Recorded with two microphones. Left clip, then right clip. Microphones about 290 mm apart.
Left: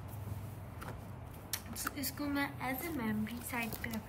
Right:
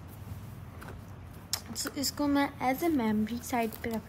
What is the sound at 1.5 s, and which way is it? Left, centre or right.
A woman's voice, centre.